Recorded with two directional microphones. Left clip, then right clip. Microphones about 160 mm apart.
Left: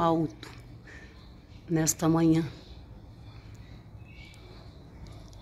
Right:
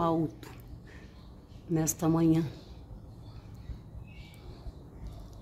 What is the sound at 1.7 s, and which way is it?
Speech, 5° left (ahead or behind).